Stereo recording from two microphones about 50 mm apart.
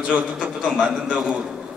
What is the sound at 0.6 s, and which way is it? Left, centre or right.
Speech, centre.